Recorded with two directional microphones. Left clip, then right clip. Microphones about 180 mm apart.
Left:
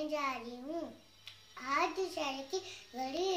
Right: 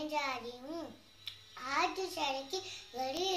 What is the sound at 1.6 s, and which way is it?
A child's voice, 15° left (ahead or behind).